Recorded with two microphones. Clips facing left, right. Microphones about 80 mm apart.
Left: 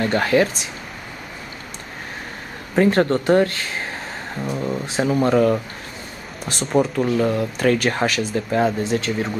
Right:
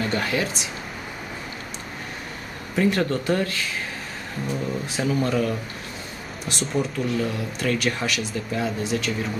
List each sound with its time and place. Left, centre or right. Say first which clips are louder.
0.0 s speech: left 7 dB; left
2.7 s speech: left 5 dB; left
6.7 s speech: left 7 dB; left